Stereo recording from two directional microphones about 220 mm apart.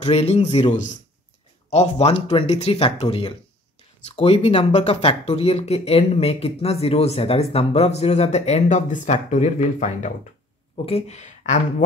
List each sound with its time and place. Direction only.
0.0 s speech: 30° left (ahead or behind)